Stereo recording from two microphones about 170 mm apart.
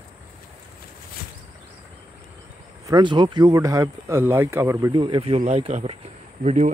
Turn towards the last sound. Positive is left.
turn(degrees=-45)  # may be behind; listen again after turning